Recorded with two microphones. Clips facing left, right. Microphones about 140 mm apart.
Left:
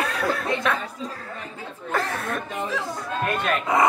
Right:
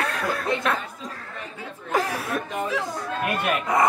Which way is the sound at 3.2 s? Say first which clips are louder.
Left 1 dB; 10° right (ahead or behind).